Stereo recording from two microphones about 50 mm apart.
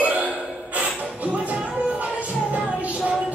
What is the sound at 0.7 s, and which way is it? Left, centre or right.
Music, right.